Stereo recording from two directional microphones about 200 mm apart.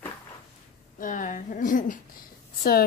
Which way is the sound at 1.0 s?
40° left (ahead or behind).